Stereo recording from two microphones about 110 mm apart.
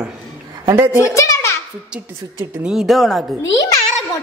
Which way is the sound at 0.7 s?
20° right (ahead or behind).